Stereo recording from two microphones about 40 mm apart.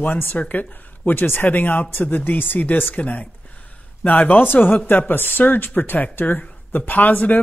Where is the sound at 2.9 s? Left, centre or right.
Left.